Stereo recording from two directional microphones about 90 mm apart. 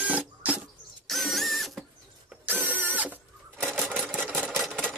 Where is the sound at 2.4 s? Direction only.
20° right (ahead or behind).